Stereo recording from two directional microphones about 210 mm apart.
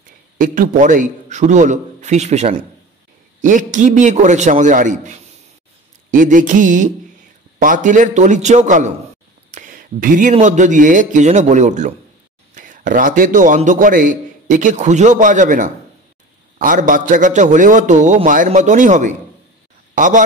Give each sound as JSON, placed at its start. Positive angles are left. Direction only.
{"t": 0.4, "sound": "a man's voice", "side_deg": -40}